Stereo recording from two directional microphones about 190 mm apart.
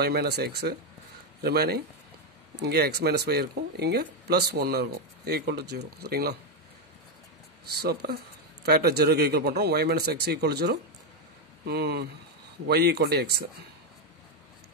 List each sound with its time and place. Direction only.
0.0 s speech: 55° right (ahead or behind)
7.6 s speech: 55° right (ahead or behind)